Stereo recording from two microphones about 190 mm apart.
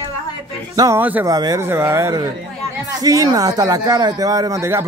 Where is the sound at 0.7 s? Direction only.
15° right (ahead or behind).